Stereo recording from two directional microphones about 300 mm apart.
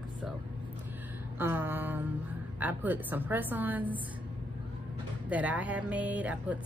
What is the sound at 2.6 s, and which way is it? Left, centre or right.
Speech, centre.